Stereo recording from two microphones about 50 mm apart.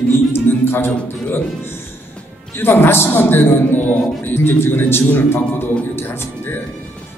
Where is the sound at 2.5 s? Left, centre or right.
Left.